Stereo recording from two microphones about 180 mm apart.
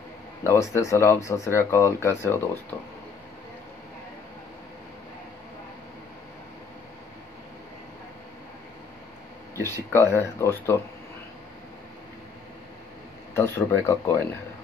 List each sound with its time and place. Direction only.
0.4 s speech: 15° left (ahead or behind)
9.6 s speech: 15° left (ahead or behind)
13.3 s speech: 15° left (ahead or behind)